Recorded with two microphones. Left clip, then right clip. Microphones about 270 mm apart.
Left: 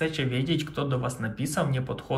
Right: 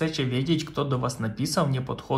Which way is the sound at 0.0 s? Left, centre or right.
Centre.